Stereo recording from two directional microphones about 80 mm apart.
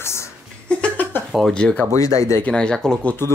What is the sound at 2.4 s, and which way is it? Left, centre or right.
Speech, centre.